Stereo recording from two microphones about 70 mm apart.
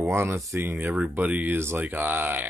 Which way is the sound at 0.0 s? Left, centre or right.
Right.